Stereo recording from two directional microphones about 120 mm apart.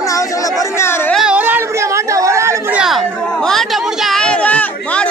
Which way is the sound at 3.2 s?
5° left (ahead or behind).